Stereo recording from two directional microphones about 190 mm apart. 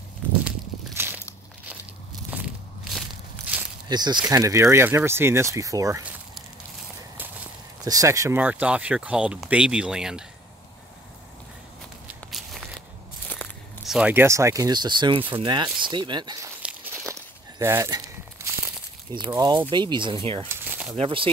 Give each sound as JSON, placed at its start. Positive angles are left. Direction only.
{"t": 0.5, "sound": "a sound", "side_deg": -10}
{"t": 2.3, "sound": "walk", "side_deg": 0}
{"t": 3.9, "sound": "speech", "side_deg": -20}
{"t": 7.8, "sound": "speech", "side_deg": -20}
{"t": 12.1, "sound": "walk", "side_deg": 0}
{"t": 13.3, "sound": "walk", "side_deg": 10}
{"t": 13.8, "sound": "speech", "side_deg": -5}
{"t": 16.6, "sound": "a sound", "side_deg": -10}
{"t": 19.1, "sound": "speech", "side_deg": -25}
{"t": 20.4, "sound": "a sound", "side_deg": -10}
{"t": 21.0, "sound": "speech", "side_deg": -30}